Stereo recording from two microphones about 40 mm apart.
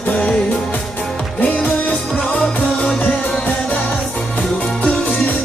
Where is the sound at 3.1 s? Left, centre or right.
Left.